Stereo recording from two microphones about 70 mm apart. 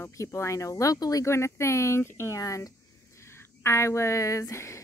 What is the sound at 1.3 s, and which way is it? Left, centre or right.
A woman's voice, left.